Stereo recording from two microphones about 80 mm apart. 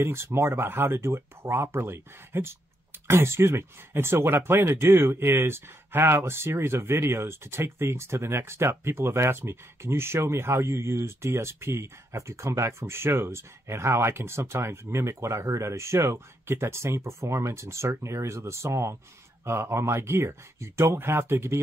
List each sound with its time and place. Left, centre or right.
0.0 s speech: right